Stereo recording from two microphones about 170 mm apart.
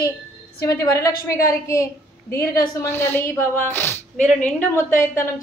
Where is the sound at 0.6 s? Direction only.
20° left (ahead or behind).